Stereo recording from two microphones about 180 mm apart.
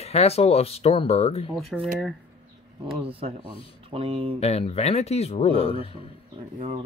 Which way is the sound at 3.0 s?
30° right (ahead or behind).